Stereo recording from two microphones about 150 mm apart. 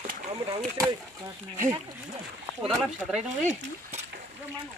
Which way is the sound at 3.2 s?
50° right (ahead or behind).